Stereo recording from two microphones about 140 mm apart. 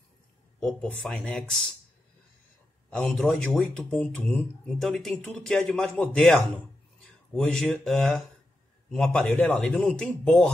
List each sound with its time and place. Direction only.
0.6 s speech: 5° left (ahead or behind)
2.9 s speech: centre (ahead or behind)